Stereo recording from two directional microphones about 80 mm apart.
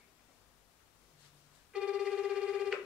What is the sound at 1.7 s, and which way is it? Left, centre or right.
Telephone, centre.